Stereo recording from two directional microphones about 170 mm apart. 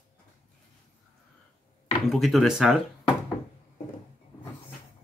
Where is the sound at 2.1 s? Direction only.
Centre (ahead or behind).